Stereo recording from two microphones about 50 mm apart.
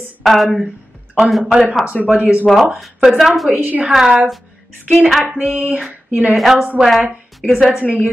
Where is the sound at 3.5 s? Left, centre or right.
Right.